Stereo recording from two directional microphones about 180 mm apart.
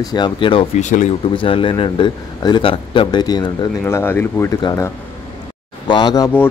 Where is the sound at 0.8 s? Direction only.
45° left (ahead or behind).